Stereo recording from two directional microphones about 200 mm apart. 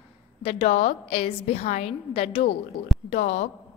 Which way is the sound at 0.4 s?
30° left (ahead or behind).